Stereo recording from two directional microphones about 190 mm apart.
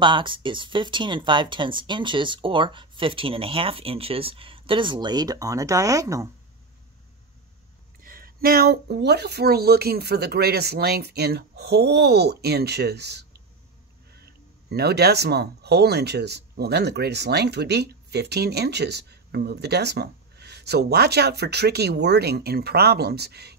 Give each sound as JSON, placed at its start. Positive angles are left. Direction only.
{"t": 0.0, "sound": "speech", "side_deg": -25}
{"t": 8.0, "sound": "speech", "side_deg": -50}